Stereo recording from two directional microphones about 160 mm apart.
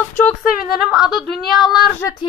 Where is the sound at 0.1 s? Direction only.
10° left (ahead or behind).